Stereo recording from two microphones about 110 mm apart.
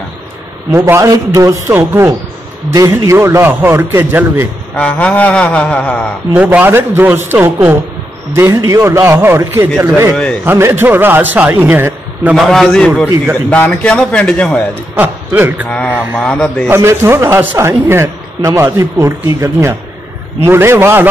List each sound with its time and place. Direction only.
0.7 s a man's voice: 25° right (ahead or behind)
4.7 s mantra: 10° left (ahead or behind)
6.3 s a man's voice: 15° right (ahead or behind)
12.4 s a man's voice: centre (ahead or behind)
13.5 s mantra: 10° left (ahead or behind)
15.0 s a man's voice: 15° right (ahead or behind)
15.7 s mantra: 10° left (ahead or behind)
16.6 s a man's voice: 20° right (ahead or behind)